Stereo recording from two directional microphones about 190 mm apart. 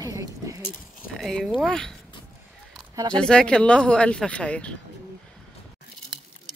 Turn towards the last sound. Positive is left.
turn(degrees=5)  # may be behind; listen again after turning